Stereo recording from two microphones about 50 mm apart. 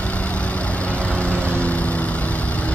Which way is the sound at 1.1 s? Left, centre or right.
Left.